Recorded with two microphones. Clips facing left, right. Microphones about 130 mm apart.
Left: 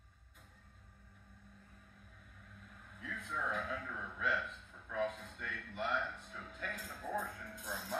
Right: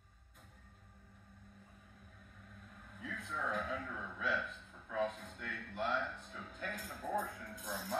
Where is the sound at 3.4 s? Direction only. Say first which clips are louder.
Right 1 dB; centre (ahead or behind).